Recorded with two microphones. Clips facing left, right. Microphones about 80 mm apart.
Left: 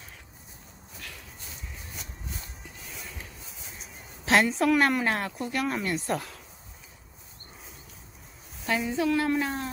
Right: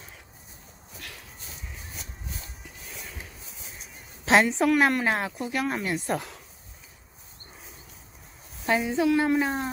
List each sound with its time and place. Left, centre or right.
4.6 s speech: centre
8.6 s a woman's voice: right